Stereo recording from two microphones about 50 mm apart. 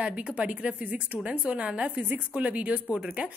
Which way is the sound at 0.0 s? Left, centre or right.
Right.